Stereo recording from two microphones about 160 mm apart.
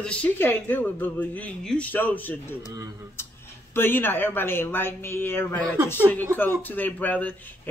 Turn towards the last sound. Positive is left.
turn(degrees=10)  # may be behind; listen again after turning